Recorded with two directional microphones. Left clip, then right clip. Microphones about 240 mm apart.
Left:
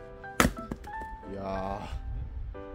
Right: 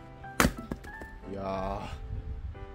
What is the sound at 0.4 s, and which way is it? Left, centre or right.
Music, centre.